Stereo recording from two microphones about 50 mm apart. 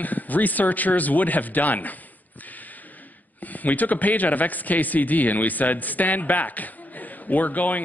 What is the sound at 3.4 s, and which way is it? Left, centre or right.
A man's voice, left.